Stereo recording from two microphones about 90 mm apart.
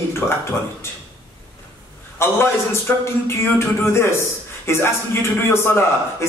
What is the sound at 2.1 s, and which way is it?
A man's voice, 30° left (ahead or behind).